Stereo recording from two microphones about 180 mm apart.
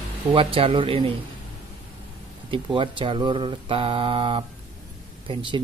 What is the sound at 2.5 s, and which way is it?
Speech, 30° right (ahead or behind).